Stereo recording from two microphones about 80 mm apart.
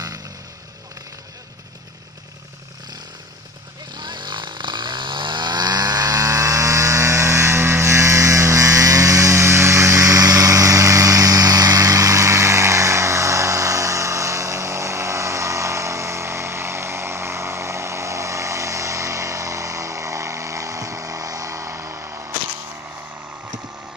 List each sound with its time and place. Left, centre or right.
3.9 s chainsaw: right